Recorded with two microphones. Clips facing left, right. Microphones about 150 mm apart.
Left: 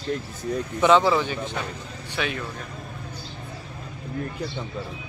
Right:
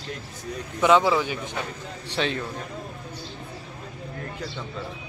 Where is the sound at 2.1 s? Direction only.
30° right (ahead or behind).